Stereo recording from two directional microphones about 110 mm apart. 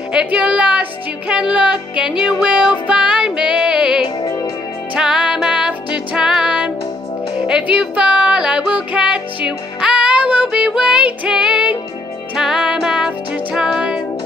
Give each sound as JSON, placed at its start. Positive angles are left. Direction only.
{"t": 0.1, "sound": "speech", "side_deg": -10}
{"t": 1.3, "sound": "music", "side_deg": -5}
{"t": 4.2, "sound": "music", "side_deg": 35}
{"t": 4.9, "sound": "music", "side_deg": -5}